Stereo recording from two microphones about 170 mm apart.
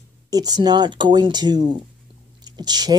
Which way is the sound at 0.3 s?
25° right (ahead or behind).